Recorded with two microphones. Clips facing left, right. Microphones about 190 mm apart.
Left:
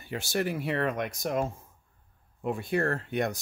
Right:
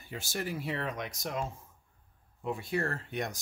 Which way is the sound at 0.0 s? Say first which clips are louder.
Left 7 dB; 70° left (ahead or behind).